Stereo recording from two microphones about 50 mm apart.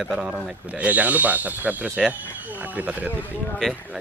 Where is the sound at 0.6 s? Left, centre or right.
Right.